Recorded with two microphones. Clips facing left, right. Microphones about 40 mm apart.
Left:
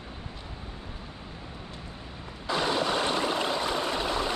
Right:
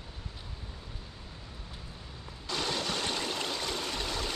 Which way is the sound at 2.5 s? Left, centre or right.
Centre.